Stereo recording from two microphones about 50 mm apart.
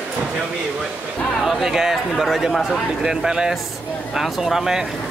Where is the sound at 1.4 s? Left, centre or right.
Centre.